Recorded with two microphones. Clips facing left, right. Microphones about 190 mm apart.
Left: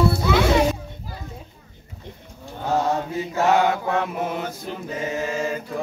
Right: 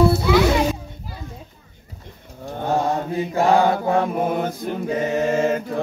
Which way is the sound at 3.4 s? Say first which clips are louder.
Right 2 dB; 35° right (ahead or behind).